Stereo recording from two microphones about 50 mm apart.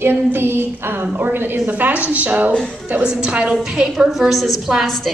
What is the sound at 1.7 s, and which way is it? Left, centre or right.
Speech, right.